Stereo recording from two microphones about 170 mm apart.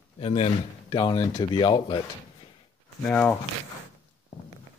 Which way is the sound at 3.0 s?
10° left (ahead or behind).